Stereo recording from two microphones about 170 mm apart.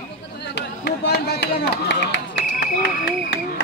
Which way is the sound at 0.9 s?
75° left (ahead or behind).